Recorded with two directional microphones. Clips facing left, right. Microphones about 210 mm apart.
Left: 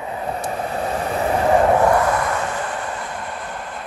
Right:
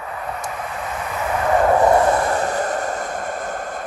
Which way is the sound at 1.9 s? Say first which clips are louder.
Right 2 dB; 25° right (ahead or behind).